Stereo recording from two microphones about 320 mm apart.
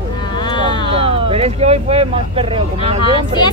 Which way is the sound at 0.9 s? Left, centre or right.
Centre.